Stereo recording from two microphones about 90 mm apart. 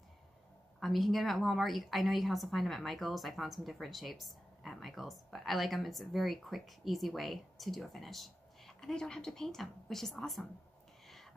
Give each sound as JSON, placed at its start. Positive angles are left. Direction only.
{"t": 0.7, "sound": "a woman's voice", "side_deg": 0}